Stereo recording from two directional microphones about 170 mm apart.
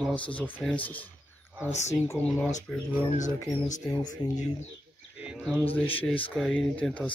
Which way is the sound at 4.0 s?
25° left (ahead or behind).